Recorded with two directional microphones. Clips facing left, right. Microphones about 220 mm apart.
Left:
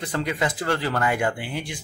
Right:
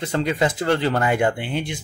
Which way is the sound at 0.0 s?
25° right (ahead or behind).